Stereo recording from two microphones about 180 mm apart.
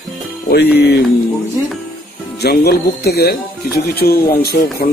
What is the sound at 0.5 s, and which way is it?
Speech, 60° left (ahead or behind).